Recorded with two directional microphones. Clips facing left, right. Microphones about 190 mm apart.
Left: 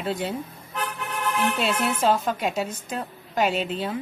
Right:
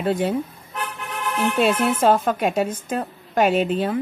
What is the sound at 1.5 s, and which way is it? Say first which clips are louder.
Speech: right 6 dB; 50° right (ahead or behind).